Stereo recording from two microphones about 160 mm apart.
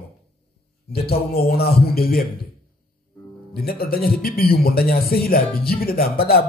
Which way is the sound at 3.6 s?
70° left (ahead or behind).